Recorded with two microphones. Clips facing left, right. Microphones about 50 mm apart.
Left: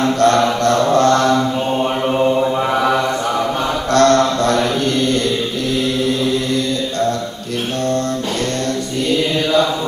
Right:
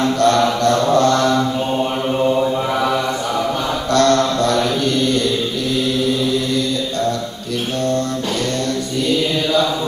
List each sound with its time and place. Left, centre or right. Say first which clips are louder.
0.2 s mantra: left 1 dB; left
1.8 s mantra: left 3 dB; centre
3.9 s mantra: left 2 dB; left